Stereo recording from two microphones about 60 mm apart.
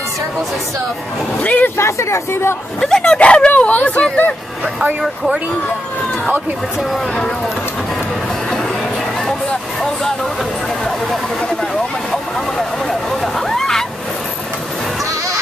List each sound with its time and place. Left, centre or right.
1.4 s speech: left
1.8 s speech: left
2.8 s speech: centre
5.0 s speech: centre
11.7 s vehicle: centre
13.2 s a sound: centre